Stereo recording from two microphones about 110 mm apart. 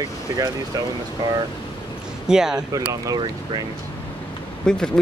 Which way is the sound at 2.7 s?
35° right (ahead or behind).